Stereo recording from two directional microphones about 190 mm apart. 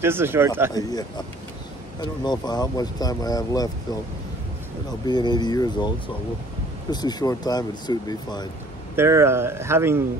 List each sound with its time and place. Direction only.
0.0 s speech: 10° right (ahead or behind)
0.7 s speech: 20° left (ahead or behind)
5.0 s speech: 20° left (ahead or behind)
8.9 s speech: 15° right (ahead or behind)